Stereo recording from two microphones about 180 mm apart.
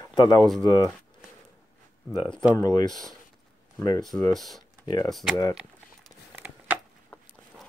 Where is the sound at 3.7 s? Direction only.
20° left (ahead or behind).